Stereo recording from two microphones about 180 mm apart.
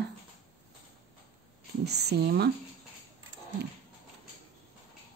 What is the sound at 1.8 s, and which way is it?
Speech, 65° right (ahead or behind).